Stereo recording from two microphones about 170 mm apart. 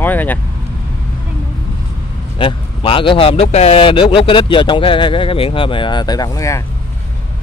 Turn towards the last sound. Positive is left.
turn(degrees=20)  # may be behind; listen again after turning